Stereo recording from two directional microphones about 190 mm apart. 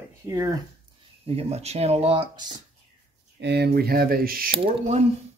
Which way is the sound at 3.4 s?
60° right (ahead or behind).